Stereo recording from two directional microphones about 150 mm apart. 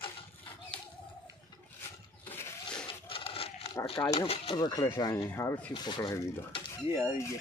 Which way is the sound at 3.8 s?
35° left (ahead or behind).